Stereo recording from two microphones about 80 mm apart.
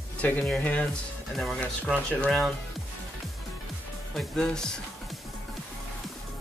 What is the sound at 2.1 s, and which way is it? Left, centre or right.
Speech, centre.